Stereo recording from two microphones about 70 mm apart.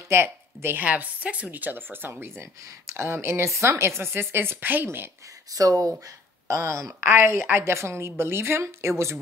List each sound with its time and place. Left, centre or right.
0.1 s a woman's voice: right
0.8 s a woman's voice: right
5.5 s a woman's voice: right